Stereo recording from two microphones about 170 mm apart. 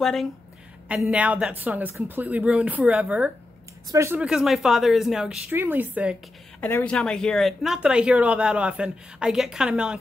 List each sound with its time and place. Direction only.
0.0 s speech: centre (ahead or behind)
6.6 s speech: 10° left (ahead or behind)